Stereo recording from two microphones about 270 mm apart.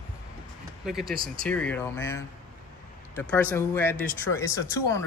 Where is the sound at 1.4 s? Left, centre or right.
Centre.